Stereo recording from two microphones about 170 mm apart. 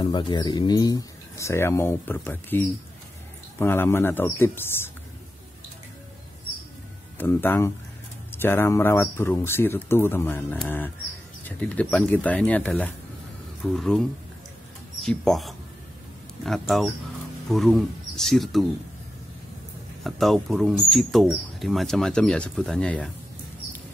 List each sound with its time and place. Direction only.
0.0 s speech: 25° left (ahead or behind)
7.2 s speech: 10° left (ahead or behind)
20.0 s speech: centre (ahead or behind)